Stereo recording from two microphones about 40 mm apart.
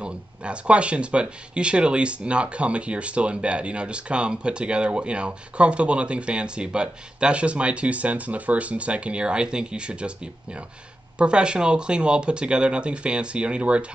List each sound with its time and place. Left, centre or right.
0.0 s speech: right